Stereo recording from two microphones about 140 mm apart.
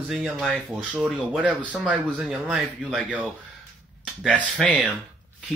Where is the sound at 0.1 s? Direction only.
Centre (ahead or behind).